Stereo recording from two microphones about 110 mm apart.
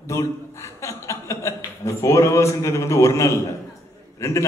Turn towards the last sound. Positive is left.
turn(degrees=25)  # may be behind; listen again after turning